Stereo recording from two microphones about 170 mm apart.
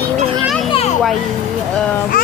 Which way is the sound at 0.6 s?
35° left (ahead or behind).